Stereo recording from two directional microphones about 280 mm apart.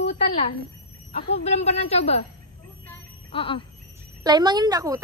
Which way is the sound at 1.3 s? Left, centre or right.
Left.